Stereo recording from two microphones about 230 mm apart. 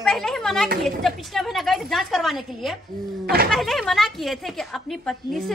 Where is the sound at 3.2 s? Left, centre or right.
Right.